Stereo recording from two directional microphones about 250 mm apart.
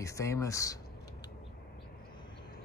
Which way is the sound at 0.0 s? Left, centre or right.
Centre.